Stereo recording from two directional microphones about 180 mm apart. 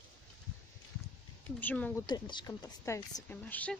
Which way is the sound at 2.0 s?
25° left (ahead or behind).